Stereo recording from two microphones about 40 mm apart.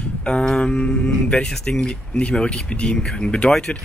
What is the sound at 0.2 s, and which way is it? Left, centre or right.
Music, left.